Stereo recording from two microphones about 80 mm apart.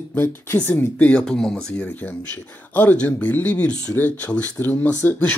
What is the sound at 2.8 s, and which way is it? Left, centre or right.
Speech, left.